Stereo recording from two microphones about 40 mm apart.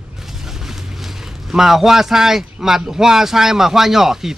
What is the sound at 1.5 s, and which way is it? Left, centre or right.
Speech, centre.